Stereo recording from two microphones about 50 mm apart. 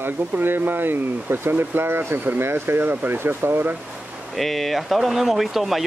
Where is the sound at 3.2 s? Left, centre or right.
Right.